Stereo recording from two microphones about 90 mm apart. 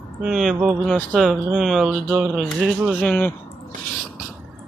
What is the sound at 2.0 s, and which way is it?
Speech, 15° right (ahead or behind).